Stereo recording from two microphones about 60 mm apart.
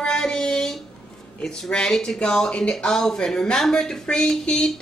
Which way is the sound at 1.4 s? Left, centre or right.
Centre.